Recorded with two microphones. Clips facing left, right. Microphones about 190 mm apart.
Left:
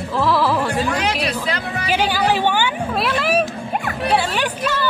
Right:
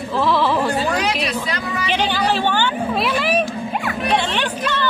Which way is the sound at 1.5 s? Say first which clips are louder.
Even; 60° left (ahead or behind).